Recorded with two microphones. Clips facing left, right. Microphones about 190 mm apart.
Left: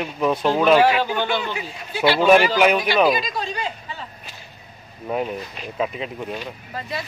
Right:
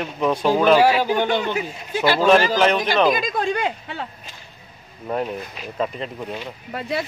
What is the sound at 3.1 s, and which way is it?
Speech, 50° right (ahead or behind).